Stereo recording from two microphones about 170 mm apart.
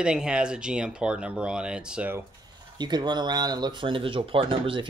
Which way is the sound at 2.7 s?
25° right (ahead or behind).